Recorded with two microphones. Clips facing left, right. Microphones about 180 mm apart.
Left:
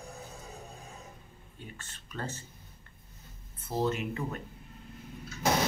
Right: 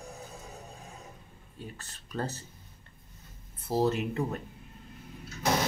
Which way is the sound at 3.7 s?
35° right (ahead or behind).